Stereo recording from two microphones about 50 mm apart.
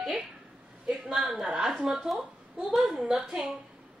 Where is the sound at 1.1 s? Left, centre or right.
Centre.